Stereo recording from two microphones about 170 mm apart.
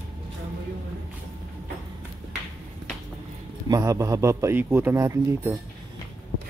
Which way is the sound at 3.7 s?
20° right (ahead or behind).